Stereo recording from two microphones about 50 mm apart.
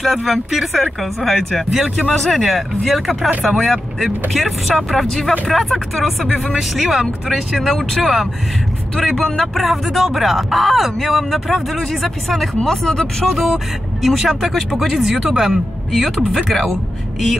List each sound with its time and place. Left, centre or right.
0.0 s speech: centre
1.7 s speech: centre
2.1 s speech: centre
13.3 s speech: centre